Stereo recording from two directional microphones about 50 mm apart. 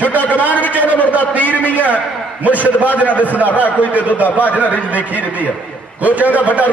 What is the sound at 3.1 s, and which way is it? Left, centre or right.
Speech, left.